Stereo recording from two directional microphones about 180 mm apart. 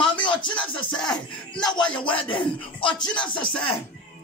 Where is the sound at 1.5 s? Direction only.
25° left (ahead or behind).